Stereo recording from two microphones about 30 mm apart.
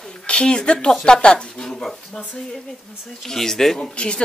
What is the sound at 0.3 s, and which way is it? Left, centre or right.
Speech, left.